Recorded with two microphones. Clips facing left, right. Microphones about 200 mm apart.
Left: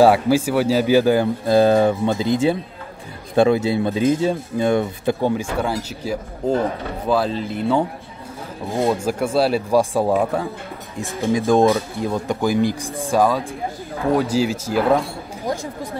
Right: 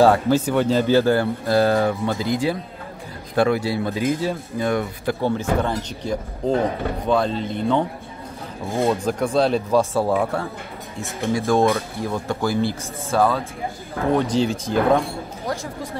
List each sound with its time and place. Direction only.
0.0 s speech: 10° left (ahead or behind)
5.4 s speech: 5° left (ahead or behind)
15.4 s speech: 15° left (ahead or behind)